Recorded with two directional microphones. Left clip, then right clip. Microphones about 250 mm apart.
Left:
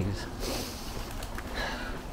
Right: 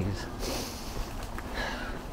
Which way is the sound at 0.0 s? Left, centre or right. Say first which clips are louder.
Even; centre.